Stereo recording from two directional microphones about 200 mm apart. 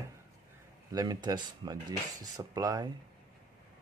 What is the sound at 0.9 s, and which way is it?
Speech, 20° right (ahead or behind).